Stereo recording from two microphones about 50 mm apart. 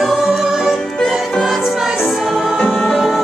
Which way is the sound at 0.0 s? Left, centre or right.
Centre.